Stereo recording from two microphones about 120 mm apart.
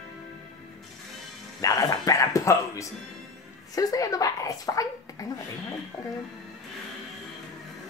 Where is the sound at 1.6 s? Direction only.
30° left (ahead or behind).